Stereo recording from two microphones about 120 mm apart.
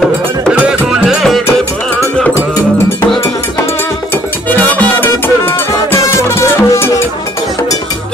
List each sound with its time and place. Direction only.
0.5 s music: 5° right (ahead or behind)
4.5 s music: 15° left (ahead or behind)